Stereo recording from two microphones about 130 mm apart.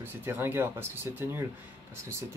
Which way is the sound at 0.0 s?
15° right (ahead or behind).